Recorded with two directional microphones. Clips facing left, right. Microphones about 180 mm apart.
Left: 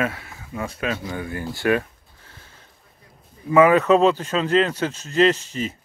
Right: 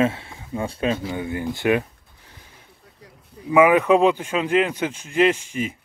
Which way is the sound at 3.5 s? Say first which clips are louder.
Even; 10° right (ahead or behind).